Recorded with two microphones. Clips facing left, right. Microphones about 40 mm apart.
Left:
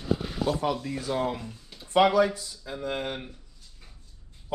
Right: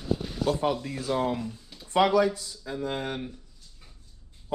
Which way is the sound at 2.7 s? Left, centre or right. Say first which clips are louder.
Even; left.